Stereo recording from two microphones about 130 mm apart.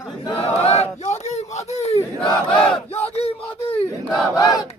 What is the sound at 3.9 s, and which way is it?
Battle cry, 25° left (ahead or behind).